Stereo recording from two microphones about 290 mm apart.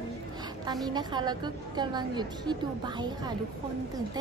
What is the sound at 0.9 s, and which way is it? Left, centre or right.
A woman's voice, centre.